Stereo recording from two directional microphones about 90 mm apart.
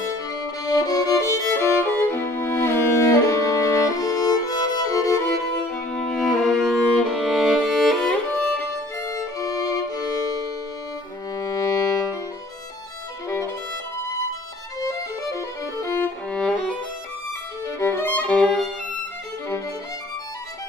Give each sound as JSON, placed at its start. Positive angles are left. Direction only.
{"t": 0.7, "sound": "music", "side_deg": 40}
{"t": 5.9, "sound": "music", "side_deg": 10}
{"t": 9.0, "sound": "violin", "side_deg": 40}
{"t": 11.3, "sound": "music", "side_deg": 40}
{"t": 14.8, "sound": "music", "side_deg": 35}
{"t": 16.3, "sound": "music", "side_deg": 10}
{"t": 17.6, "sound": "violin", "side_deg": 30}